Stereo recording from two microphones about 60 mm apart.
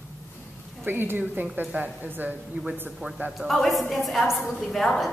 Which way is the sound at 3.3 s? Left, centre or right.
Centre.